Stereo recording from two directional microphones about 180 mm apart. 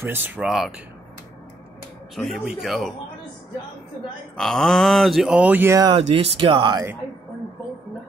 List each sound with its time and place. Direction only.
0.0 s speech: 10° right (ahead or behind)
2.1 s speech: centre (ahead or behind)
4.4 s speech: 5° left (ahead or behind)
5.8 s speech: 30° right (ahead or behind)